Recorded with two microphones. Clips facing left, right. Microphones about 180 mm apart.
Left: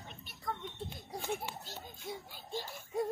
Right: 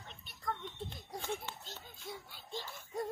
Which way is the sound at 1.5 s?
40° left (ahead or behind).